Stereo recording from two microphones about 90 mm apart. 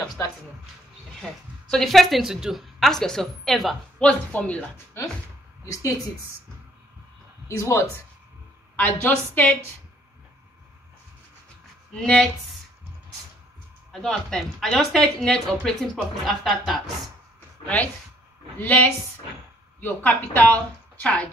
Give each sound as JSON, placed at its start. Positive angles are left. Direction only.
{"t": 1.2, "sound": "speech", "side_deg": 5}
{"t": 4.0, "sound": "speech", "side_deg": 15}
{"t": 7.4, "sound": "speech", "side_deg": 30}
{"t": 8.7, "sound": "a woman's voice", "side_deg": 20}
{"t": 11.9, "sound": "speech", "side_deg": 10}
{"t": 14.0, "sound": "speech", "side_deg": 5}
{"t": 18.6, "sound": "a woman's voice", "side_deg": 20}